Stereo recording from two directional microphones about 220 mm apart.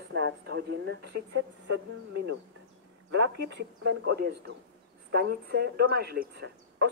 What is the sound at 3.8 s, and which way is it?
Speech, 45° right (ahead or behind).